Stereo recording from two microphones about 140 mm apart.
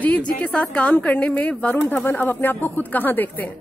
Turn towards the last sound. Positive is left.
turn(degrees=15)  # may be behind; listen again after turning